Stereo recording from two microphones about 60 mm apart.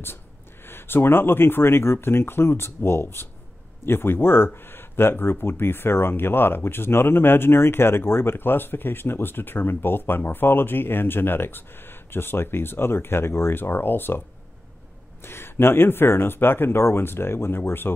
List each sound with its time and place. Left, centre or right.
0.7 s speech: left
15.2 s speech: left